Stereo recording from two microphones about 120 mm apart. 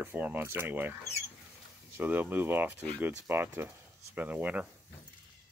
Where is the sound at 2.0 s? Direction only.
15° right (ahead or behind).